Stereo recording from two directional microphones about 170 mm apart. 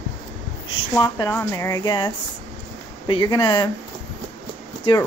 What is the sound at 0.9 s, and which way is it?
Speech, 15° left (ahead or behind).